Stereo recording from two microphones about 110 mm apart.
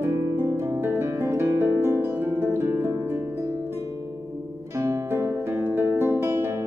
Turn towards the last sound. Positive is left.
turn(degrees=-25)  # may be behind; listen again after turning